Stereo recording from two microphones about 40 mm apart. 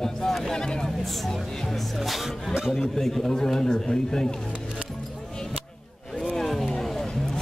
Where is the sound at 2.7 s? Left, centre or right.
Centre.